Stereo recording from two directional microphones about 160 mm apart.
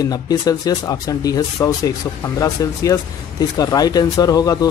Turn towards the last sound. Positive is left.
turn(degrees=25)  # may be behind; listen again after turning